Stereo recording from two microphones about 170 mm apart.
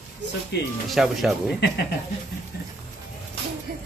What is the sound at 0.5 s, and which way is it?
Speech, 80° left.